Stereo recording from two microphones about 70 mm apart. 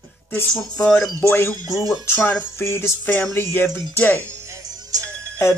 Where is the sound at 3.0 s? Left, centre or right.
Left.